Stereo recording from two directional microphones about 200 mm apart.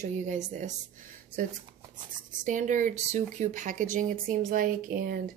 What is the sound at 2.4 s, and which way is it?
Speech, 40° right (ahead or behind).